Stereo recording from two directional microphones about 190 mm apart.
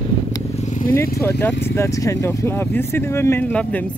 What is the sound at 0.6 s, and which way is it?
Vehicle, 40° left (ahead or behind).